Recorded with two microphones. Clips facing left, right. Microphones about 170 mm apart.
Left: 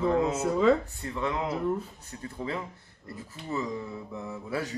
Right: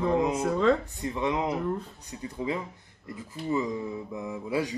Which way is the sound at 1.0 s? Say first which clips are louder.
Right 3 dB; 20° right (ahead or behind).